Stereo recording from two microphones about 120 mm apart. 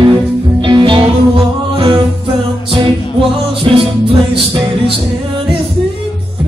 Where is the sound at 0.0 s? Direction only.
40° right (ahead or behind).